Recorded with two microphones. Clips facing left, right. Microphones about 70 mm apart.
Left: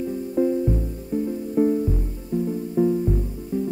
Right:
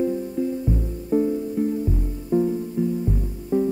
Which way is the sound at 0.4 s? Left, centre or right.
Left.